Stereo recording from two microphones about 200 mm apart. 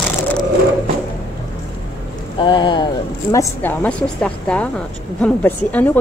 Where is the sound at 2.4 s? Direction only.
25° left (ahead or behind).